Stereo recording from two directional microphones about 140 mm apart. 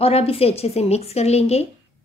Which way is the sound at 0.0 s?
45° left (ahead or behind).